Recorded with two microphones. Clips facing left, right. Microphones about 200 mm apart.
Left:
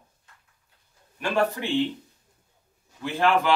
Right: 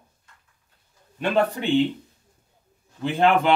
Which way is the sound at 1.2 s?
20° right (ahead or behind).